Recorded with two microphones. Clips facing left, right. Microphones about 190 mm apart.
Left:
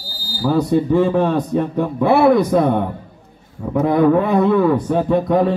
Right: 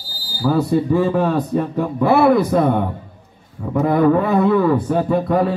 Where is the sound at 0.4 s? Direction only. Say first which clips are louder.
Left 1 dB; centre (ahead or behind).